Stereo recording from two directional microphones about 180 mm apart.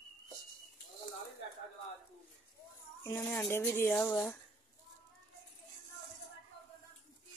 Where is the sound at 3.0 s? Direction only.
10° left (ahead or behind).